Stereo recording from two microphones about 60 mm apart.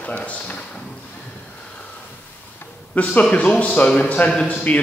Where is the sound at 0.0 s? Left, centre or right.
Left.